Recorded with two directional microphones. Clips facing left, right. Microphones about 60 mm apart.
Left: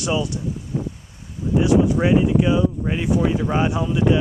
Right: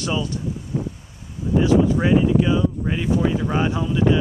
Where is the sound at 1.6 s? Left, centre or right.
Centre.